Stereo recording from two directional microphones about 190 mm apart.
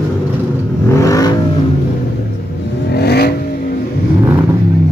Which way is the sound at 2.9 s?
55° left (ahead or behind).